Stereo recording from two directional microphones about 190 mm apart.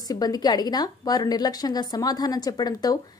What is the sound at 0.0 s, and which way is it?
A woman's voice, 20° left (ahead or behind).